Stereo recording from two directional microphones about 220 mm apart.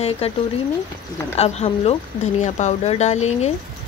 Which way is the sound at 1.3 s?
30° left (ahead or behind).